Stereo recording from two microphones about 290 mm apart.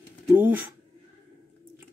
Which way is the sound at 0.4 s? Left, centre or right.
Centre.